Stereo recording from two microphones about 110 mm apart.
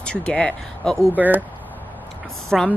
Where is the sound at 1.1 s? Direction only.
15° right (ahead or behind).